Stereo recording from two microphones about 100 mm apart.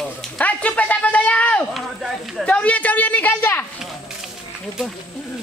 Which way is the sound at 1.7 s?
Centre (ahead or behind).